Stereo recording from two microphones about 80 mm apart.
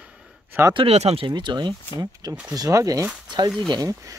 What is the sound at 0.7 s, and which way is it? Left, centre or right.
Speech, right.